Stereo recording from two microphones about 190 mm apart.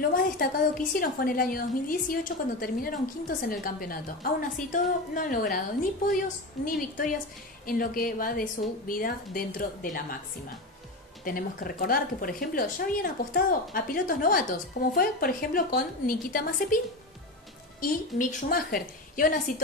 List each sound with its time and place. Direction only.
0.1 s speech: 45° left (ahead or behind)
11.2 s speech: 50° left (ahead or behind)